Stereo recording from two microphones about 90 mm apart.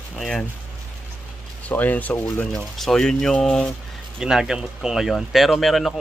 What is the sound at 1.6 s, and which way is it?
Speech, 20° left (ahead or behind).